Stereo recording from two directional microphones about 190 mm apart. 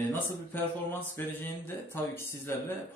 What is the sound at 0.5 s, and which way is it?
Speech, 10° left (ahead or behind).